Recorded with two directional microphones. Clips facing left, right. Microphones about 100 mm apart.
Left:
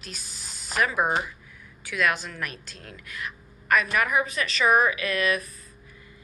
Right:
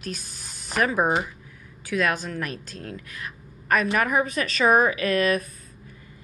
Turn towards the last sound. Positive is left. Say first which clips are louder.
# right 4 dB
turn(degrees=-40)  # may be behind; listen again after turning